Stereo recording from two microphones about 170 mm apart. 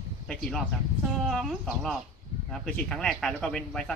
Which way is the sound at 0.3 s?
5° left (ahead or behind).